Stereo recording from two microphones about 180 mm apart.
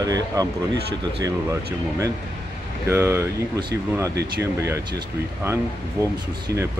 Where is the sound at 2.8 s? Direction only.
15° right (ahead or behind).